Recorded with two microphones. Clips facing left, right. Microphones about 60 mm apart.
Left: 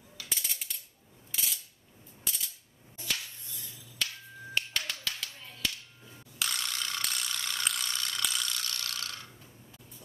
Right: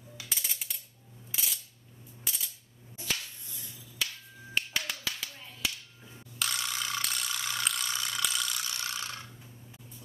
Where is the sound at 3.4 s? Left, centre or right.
Right.